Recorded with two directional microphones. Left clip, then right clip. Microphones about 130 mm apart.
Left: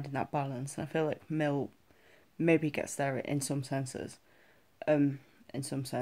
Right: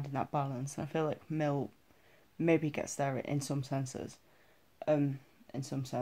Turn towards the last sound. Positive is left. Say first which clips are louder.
# left 2 dB
turn(degrees=25)  # may be behind; listen again after turning